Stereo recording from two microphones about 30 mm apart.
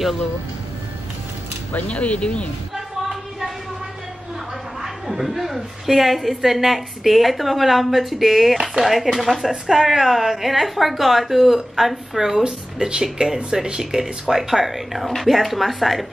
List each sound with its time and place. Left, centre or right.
1.9 s speech: left
2.7 s a sound: centre
4.8 s a woman's voice: centre
12.4 s a woman's voice: right; by 16.1 s centre